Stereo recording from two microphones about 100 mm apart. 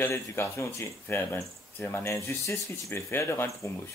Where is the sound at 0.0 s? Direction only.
25° left (ahead or behind).